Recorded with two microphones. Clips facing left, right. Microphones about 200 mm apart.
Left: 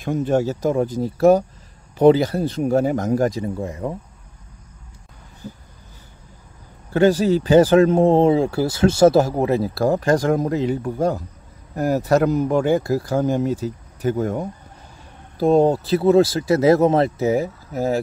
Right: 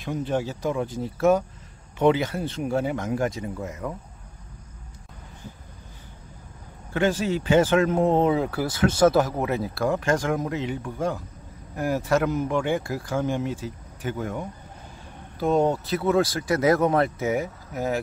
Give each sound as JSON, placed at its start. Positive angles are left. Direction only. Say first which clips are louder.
{"t": 0.0, "sound": "speech", "louder": "left 7 dB", "side_deg": 45}
{"t": 6.9, "sound": "speech", "louder": "left 8 dB", "side_deg": 35}